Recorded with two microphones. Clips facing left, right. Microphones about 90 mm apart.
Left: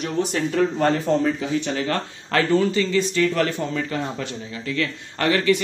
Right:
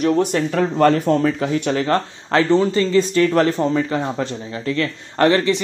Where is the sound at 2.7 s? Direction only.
35° right (ahead or behind).